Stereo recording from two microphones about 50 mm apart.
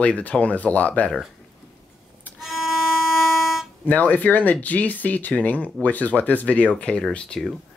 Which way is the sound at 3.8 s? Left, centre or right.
Left.